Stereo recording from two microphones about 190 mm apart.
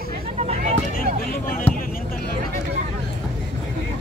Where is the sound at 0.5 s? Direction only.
40° right (ahead or behind).